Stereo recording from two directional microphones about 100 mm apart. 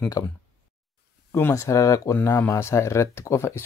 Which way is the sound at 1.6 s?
35° left (ahead or behind).